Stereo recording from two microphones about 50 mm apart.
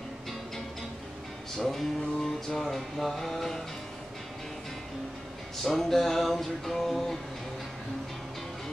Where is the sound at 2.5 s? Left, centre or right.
Centre.